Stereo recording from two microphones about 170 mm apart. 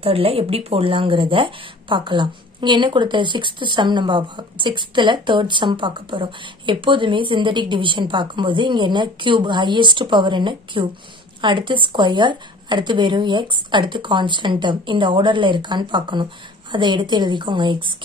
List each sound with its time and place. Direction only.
0.0 s speech: 35° right (ahead or behind)